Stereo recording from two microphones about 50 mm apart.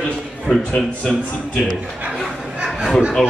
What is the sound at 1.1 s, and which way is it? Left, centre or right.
Speech, centre.